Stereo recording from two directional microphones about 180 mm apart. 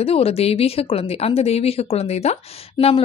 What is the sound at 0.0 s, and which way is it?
A woman's voice, 35° left (ahead or behind).